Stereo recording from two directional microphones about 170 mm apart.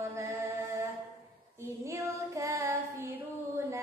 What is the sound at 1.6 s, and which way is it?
Child singing, 15° right (ahead or behind).